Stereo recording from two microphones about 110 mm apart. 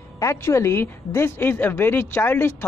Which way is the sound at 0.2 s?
30° left (ahead or behind).